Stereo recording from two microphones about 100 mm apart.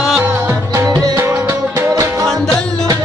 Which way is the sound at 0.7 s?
30° right (ahead or behind).